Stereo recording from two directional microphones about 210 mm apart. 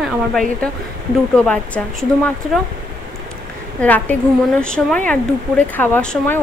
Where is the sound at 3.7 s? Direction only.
10° left (ahead or behind).